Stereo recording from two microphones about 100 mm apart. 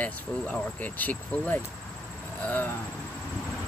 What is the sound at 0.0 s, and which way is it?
Speech, 15° left (ahead or behind).